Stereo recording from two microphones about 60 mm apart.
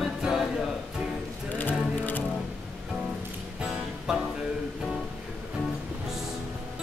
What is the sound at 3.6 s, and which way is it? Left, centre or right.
Music, centre.